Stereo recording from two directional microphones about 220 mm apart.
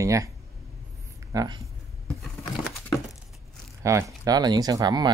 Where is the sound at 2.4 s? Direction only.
Centre (ahead or behind).